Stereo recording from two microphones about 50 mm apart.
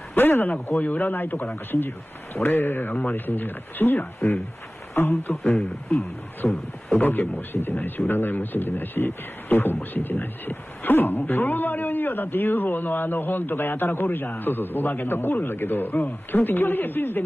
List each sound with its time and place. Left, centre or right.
0.1 s speech: left
0.7 s a man's voice: left
4.9 s a man's voice: left
5.6 s speech: centre
7.0 s a man's voice: left